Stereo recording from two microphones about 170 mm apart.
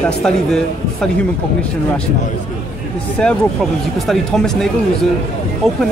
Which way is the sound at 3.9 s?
Centre (ahead or behind).